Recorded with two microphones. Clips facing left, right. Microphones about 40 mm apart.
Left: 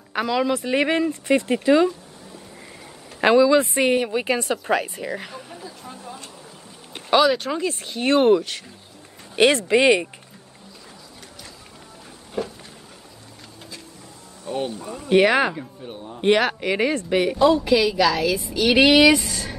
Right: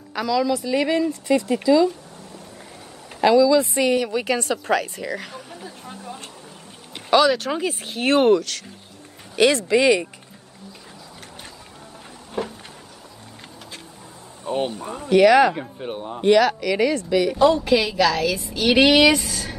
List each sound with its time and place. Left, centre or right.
0.1 s speech: left
3.2 s a woman's voice: left; by 5.3 s centre
7.1 s speech: centre
7.5 s a woman's voice: centre
8.4 s a woman's voice: centre
9.3 s a woman's voice: left
12.4 s a sound: right
14.4 s a sound: right
14.7 s speech: right
15.0 s a woman's voice: left
15.9 s speech: right
16.3 s a woman's voice: left
17.4 s a woman's voice: centre